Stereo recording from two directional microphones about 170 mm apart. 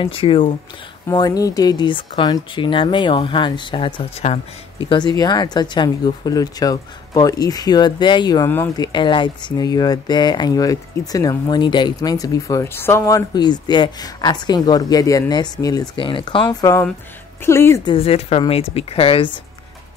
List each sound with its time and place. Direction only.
0.0 s speech: 30° left (ahead or behind)
4.2 s speech: 40° left (ahead or behind)
4.8 s speech: 25° left (ahead or behind)
17.8 s speech: 35° left (ahead or behind)